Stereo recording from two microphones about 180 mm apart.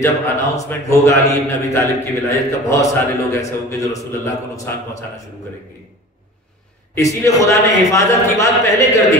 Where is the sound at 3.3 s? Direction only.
15° left (ahead or behind).